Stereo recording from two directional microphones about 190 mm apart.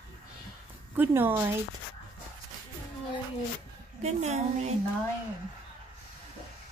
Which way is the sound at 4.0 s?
35° right (ahead or behind).